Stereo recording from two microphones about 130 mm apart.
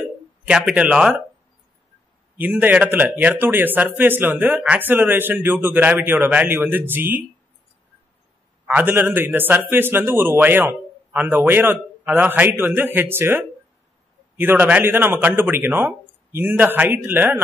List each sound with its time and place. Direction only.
0.5 s a man's voice: 5° right (ahead or behind)
2.3 s a man's voice: 15° right (ahead or behind)
8.6 s a man's voice: 15° right (ahead or behind)